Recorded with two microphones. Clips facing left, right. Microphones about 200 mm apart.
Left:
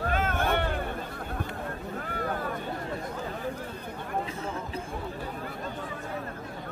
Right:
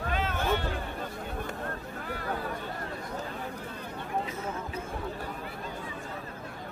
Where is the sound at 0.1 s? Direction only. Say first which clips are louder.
Left 1 dB; 50° left (ahead or behind).